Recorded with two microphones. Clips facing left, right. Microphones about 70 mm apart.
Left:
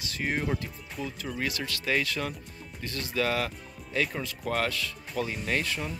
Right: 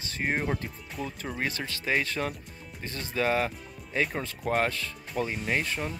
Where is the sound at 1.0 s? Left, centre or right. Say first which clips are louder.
Even; right.